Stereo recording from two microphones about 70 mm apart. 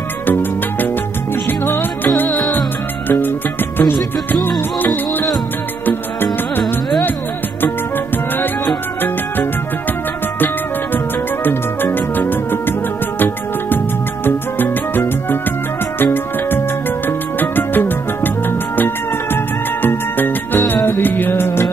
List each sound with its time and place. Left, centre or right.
0.3 s music: left
8.4 s music: left
11.4 s music: left
19.3 s music: left